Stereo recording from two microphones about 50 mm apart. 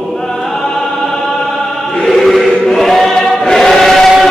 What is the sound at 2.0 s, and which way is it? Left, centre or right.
Choir, centre.